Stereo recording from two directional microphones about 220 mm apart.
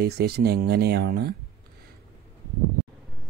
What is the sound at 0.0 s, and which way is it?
Speech, 45° right (ahead or behind).